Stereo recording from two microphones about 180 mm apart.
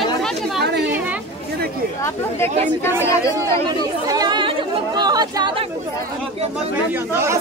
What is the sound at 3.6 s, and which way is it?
Chatter, 20° right (ahead or behind).